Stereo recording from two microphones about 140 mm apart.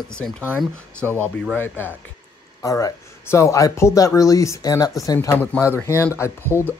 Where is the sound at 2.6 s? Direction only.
25° left (ahead or behind).